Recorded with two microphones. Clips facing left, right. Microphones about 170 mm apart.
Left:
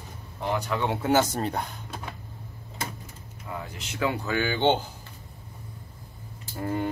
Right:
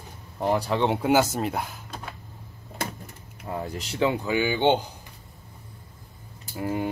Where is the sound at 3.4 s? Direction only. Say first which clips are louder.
Right 5 dB; 40° right (ahead or behind).